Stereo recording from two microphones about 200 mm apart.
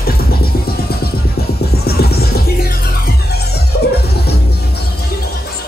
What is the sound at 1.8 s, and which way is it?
Music, 50° left (ahead or behind).